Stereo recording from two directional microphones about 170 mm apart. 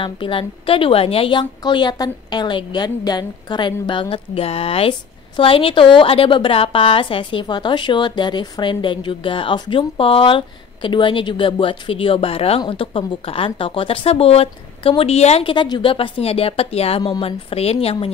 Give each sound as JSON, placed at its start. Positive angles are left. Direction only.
{"t": 0.0, "sound": "a woman's voice", "side_deg": 30}